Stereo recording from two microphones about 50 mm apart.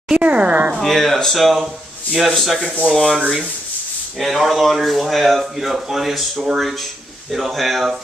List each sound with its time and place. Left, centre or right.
0.2 s speech: right
0.7 s speech: centre
2.0 s speech: centre
2.3 s speech: centre
4.2 s speech: centre